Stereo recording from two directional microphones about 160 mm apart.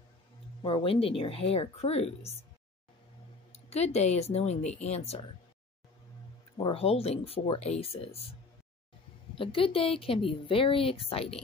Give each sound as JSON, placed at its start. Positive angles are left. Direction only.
{"t": 0.7, "sound": "a woman's voice", "side_deg": 35}
{"t": 3.5, "sound": "a woman's voice", "side_deg": 40}
{"t": 6.6, "sound": "a woman's voice", "side_deg": 35}
{"t": 9.3, "sound": "a woman's voice", "side_deg": 35}